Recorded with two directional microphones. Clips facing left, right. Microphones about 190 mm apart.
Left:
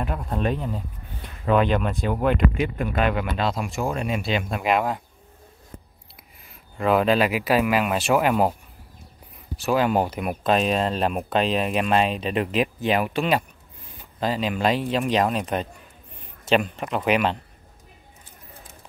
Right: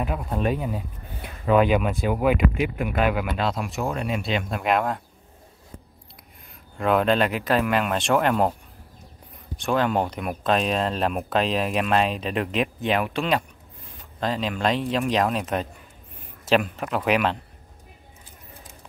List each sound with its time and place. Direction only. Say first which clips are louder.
0.0 s speech: right 1 dB; 5° right (ahead or behind)
6.8 s speech: left 1 dB; centre (ahead or behind)
9.6 s speech: left 2 dB; 5° left (ahead or behind)